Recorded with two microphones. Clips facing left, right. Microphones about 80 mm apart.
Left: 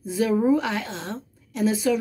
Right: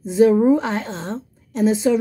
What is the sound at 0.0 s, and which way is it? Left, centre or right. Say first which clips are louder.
A woman's voice: right 8 dB; right.